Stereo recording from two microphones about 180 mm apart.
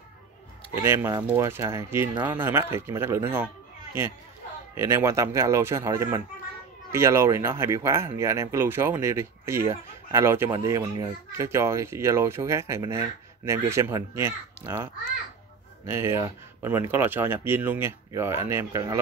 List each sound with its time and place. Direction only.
0.8 s speech: 15° right (ahead or behind)
4.7 s speech: 15° right (ahead or behind)
15.9 s speech: 15° right (ahead or behind)